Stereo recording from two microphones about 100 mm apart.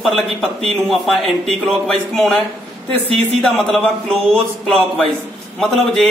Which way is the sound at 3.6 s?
10° left (ahead or behind).